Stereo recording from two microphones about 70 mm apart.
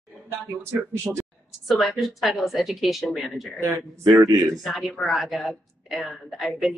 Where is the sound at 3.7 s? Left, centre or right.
Right.